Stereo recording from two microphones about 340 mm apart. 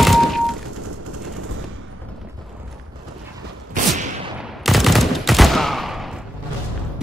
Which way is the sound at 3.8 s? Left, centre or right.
Right.